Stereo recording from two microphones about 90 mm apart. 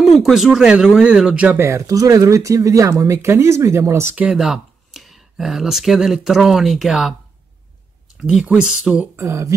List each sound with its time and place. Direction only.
0.0 s speech: centre (ahead or behind)
1.6 s speech: 35° right (ahead or behind)
4.1 s speech: 10° right (ahead or behind)
8.2 s speech: 5° right (ahead or behind)
9.1 s speech: 35° right (ahead or behind)